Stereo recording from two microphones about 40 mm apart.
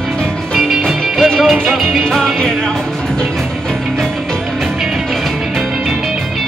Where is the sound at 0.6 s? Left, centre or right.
Centre.